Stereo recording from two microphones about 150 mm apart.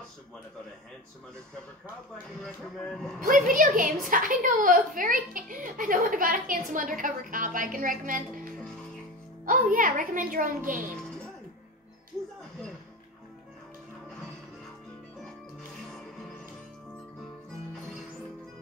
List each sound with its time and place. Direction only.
3.3 s a woman's voice: 65° right (ahead or behind)
9.5 s a woman's voice: 65° right (ahead or behind)